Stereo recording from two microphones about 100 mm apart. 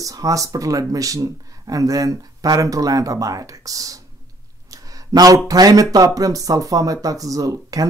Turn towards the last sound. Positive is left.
turn(degrees=-35)  # may be behind; listen again after turning